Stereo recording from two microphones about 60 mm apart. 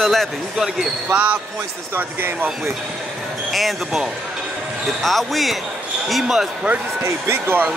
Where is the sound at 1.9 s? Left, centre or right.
Right.